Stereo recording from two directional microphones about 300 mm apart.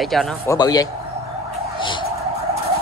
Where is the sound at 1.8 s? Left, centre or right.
Centre.